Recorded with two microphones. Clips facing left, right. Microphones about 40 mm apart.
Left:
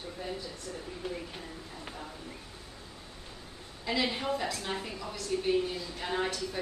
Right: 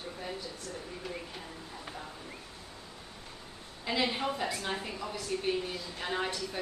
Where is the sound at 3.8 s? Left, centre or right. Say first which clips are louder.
Even; centre.